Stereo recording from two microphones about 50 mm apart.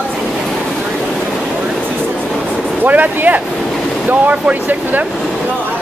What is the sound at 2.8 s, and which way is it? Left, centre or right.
Speech, right.